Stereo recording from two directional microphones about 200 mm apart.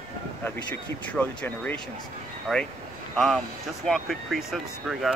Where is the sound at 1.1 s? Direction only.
5° left (ahead or behind).